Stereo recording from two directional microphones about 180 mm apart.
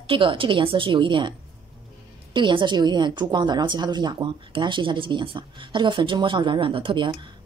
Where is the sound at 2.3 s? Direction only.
25° right (ahead or behind).